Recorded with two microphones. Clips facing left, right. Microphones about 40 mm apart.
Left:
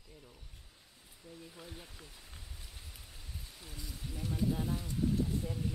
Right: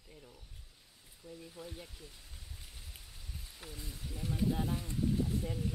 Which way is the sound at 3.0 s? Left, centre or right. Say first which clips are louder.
Left 1 dB; centre.